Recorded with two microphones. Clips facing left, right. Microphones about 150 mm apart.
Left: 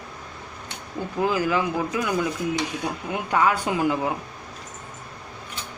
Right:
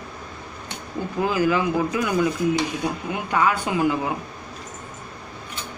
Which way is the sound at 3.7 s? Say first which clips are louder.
Right 1 dB; 10° right (ahead or behind).